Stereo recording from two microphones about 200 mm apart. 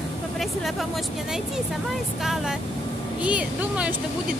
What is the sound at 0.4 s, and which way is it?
A woman's voice, centre (ahead or behind).